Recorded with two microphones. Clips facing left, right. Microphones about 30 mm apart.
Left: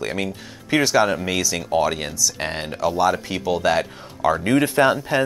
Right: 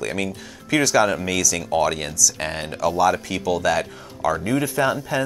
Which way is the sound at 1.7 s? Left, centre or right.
Centre.